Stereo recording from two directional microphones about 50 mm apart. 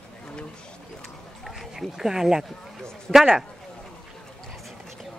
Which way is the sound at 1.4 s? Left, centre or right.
Centre.